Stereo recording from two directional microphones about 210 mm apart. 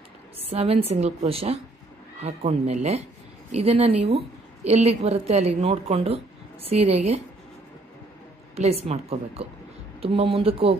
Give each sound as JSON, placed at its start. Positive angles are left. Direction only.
{"t": 0.4, "sound": "a woman's voice", "side_deg": -30}
{"t": 8.5, "sound": "a woman's voice", "side_deg": -30}